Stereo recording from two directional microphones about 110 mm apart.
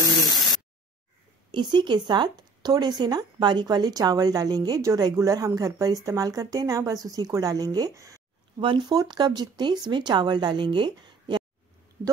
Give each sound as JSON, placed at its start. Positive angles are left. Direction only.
{"t": 1.5, "sound": "speech", "side_deg": -45}
{"t": 8.5, "sound": "speech", "side_deg": -45}